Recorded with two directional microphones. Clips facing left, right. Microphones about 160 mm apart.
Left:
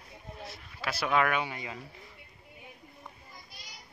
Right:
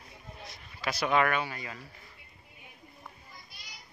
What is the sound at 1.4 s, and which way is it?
Speech, 20° left (ahead or behind).